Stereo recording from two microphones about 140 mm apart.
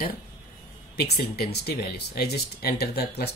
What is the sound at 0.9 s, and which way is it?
Speech, 90° left.